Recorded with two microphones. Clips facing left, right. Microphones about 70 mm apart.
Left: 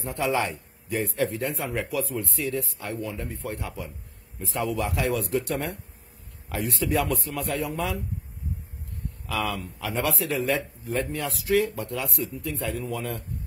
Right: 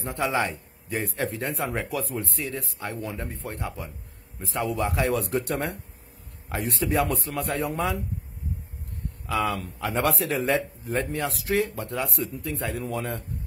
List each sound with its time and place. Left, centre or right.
0.0 s a man's voice: right
9.8 s a man's voice: right
10.4 s a man's voice: right